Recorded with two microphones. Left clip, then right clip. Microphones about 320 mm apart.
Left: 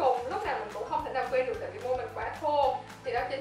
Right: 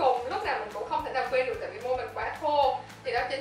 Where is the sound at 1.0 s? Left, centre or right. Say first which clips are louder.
Right 2 dB; centre.